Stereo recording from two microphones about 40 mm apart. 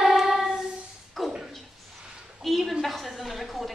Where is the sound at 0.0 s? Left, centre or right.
Centre.